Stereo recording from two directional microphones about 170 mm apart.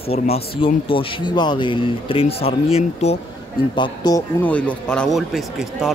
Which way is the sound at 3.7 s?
25° left (ahead or behind).